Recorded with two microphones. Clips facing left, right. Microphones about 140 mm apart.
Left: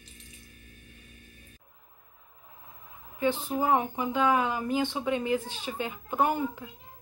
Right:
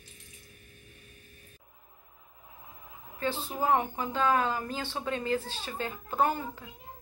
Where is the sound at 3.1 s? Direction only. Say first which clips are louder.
Left 5 dB; 15° left (ahead or behind).